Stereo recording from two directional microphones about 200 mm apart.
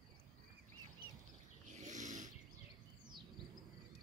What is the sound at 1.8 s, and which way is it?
Snoring, 40° right (ahead or behind).